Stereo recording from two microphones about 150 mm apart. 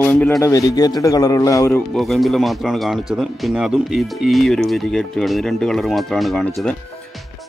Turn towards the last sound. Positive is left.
turn(degrees=5)  # may be behind; listen again after turning